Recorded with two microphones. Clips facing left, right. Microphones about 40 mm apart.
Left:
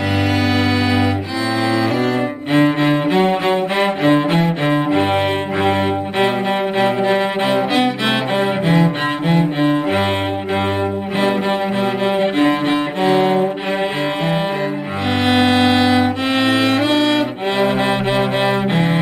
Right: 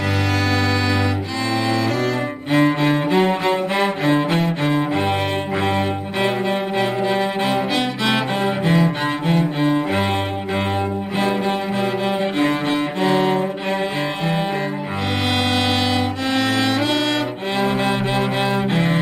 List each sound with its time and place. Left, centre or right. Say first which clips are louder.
2.5 s cello: left 2 dB; centre
7.7 s music: left 3 dB; left
8.6 s cello: left 2 dB; centre
11.8 s music: left 4 dB; left
15.2 s music: left 7 dB; left